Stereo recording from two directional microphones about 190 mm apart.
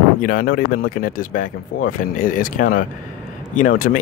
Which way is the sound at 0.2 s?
45° left (ahead or behind).